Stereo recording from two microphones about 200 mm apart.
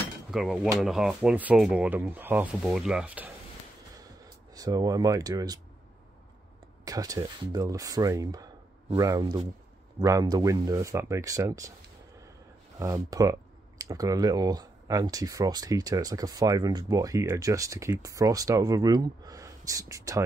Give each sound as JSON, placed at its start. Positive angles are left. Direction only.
{"t": 0.3, "sound": "speech", "side_deg": 0}
{"t": 4.6, "sound": "speech", "side_deg": -20}
{"t": 6.8, "sound": "speech", "side_deg": -15}
{"t": 12.7, "sound": "speech", "side_deg": -15}